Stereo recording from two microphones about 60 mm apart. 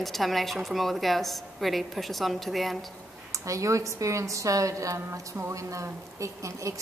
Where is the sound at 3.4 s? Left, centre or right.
Right.